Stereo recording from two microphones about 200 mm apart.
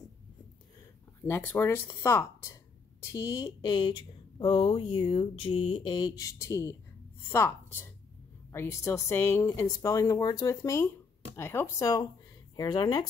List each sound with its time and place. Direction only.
1.2 s speech: 10° left (ahead or behind)